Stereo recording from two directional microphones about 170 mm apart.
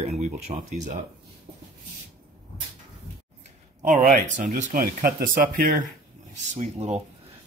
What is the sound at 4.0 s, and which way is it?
Speech, 50° right (ahead or behind).